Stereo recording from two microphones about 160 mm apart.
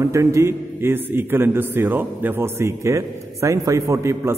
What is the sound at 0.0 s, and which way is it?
A man's voice, 20° right (ahead or behind).